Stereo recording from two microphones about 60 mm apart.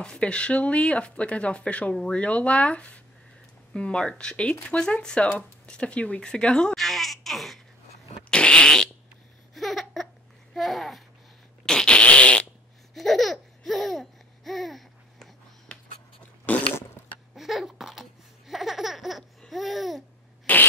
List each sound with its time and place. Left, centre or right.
0.0 s speech: centre
6.8 s a sound: centre
8.3 s fart: centre
9.5 s a sound: centre
10.5 s babbling: centre
11.6 s fart: centre
12.9 s laughter: centre
15.7 s a sound: left
17.4 s a sound: centre
18.5 s baby laughter: centre
19.5 s babbling: centre
20.5 s fart: left